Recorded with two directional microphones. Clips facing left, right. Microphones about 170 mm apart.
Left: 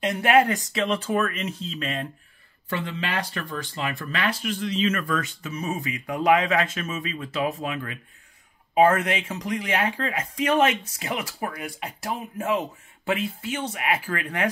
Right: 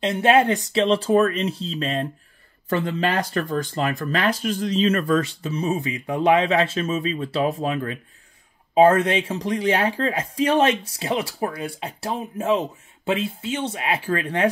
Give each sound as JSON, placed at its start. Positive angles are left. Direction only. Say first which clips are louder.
{"t": 0.0, "sound": "speech", "louder": "right 2 dB", "side_deg": -25}
{"t": 2.7, "sound": "speech", "louder": "right 6 dB", "side_deg": -45}